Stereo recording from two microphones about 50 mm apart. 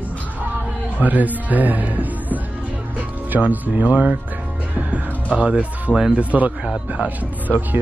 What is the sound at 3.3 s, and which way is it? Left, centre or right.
Speech, right.